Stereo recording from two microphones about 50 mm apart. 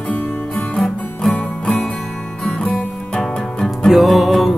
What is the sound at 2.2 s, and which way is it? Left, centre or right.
Music, centre.